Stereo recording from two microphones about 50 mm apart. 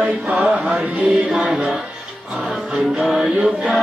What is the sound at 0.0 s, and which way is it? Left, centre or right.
Mantra, right.